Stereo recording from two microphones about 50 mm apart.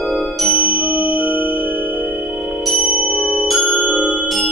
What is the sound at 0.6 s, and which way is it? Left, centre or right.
Tubular bells, right.